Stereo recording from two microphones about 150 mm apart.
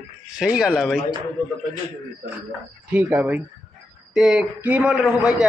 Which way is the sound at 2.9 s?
10° right (ahead or behind).